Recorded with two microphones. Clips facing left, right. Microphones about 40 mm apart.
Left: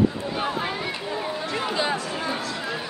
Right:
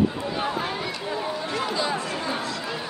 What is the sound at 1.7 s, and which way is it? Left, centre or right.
Chatter, left.